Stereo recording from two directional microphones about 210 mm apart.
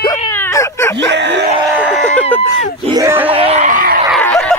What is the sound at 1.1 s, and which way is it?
Screaming, 55° right (ahead or behind).